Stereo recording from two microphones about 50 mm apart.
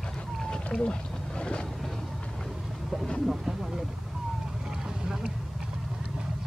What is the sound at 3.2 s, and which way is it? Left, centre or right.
Speech, centre.